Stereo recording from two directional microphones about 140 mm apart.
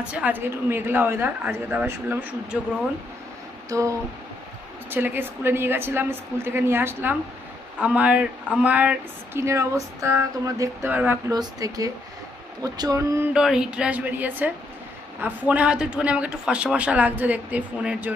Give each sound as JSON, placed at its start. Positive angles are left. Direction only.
{"t": 0.0, "sound": "speech", "side_deg": -10}
{"t": 4.9, "sound": "speech", "side_deg": -15}
{"t": 11.3, "sound": "speech", "side_deg": -25}
{"t": 13.3, "sound": "speech", "side_deg": -5}